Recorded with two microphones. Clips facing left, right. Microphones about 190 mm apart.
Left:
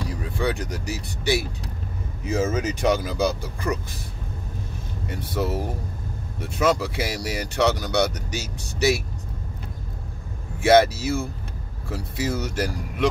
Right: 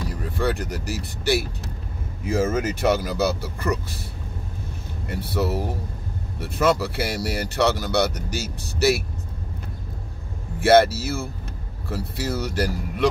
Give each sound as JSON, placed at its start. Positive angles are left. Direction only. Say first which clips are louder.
{"t": 0.1, "sound": "speech", "louder": "right 2 dB", "side_deg": 0}
{"t": 5.2, "sound": "speech", "louder": "right 1 dB", "side_deg": -5}
{"t": 6.6, "sound": "speech", "louder": "right 1 dB", "side_deg": -5}
{"t": 10.6, "sound": "speech", "louder": "right 1 dB", "side_deg": -5}